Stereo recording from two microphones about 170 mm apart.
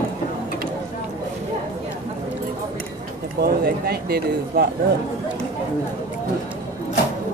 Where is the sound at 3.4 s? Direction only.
65° right (ahead or behind).